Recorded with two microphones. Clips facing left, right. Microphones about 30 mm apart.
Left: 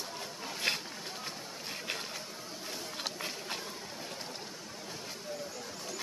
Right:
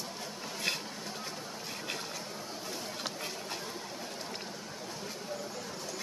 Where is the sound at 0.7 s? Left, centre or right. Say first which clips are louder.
Left 1 dB; left.